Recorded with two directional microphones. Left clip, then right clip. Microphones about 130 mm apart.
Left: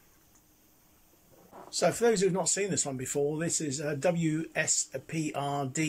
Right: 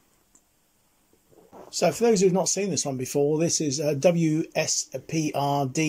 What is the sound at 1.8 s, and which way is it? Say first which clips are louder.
Speech: right 5 dB; 15° right (ahead or behind).